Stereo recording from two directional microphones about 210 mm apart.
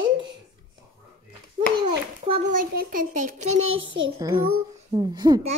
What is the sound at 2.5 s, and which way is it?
Speech, 45° right (ahead or behind).